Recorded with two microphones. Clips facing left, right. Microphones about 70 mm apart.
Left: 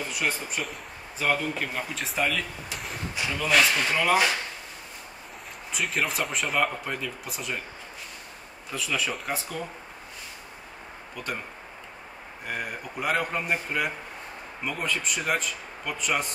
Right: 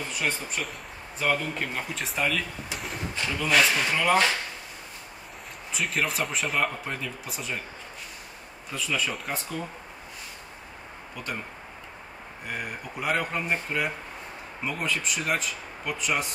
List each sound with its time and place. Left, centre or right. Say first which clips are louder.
0.1 s speech: right 1 dB; centre
5.7 s speech: even; centre
8.7 s speech: even; centre
12.4 s speech: left 1 dB; centre